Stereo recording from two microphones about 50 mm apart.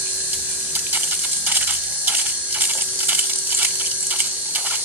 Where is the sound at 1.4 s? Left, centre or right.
Right.